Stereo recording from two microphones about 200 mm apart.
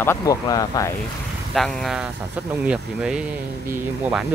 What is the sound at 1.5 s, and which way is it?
Speech, centre (ahead or behind).